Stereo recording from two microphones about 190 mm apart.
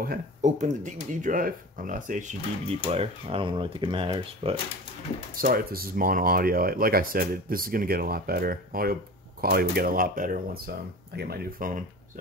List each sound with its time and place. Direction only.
0.0 s speech: 45° right (ahead or behind)
2.9 s speech: 30° right (ahead or behind)
5.3 s speech: 50° right (ahead or behind)